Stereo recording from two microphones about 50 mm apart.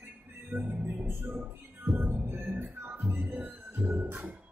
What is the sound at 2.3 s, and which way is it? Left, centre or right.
Music, right.